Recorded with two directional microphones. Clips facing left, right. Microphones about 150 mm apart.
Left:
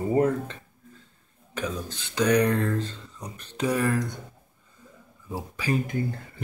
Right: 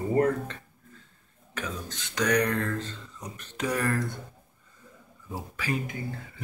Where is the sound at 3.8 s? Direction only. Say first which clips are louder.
Left 1 dB; 15° left (ahead or behind).